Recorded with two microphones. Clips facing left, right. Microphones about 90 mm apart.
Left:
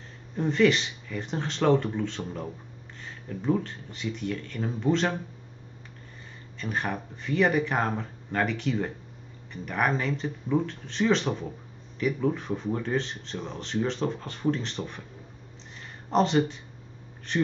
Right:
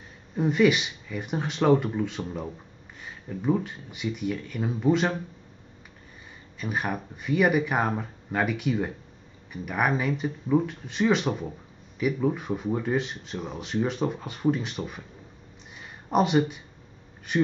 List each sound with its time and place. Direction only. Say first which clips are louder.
0.4 s speech: right 1 dB; 10° right (ahead or behind)
6.6 s speech: right 1 dB; 10° right (ahead or behind)
16.1 s speech: right 1 dB; 10° right (ahead or behind)